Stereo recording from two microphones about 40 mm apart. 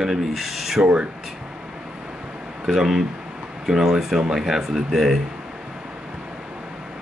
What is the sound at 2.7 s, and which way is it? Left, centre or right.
Speech, centre.